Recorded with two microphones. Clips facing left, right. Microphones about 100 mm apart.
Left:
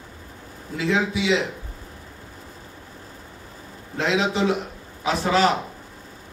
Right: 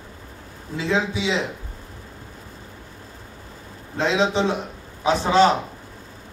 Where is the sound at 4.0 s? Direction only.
30° right (ahead or behind).